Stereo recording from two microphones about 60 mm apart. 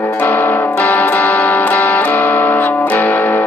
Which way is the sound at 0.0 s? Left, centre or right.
Left.